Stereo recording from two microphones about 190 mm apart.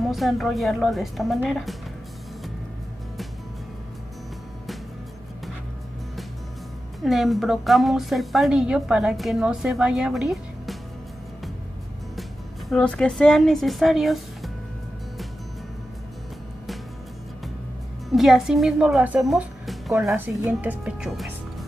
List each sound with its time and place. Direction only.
0.0 s a woman's voice: centre (ahead or behind)
7.0 s a woman's voice: centre (ahead or behind)
12.2 s a woman's voice: centre (ahead or behind)
18.1 s a woman's voice: centre (ahead or behind)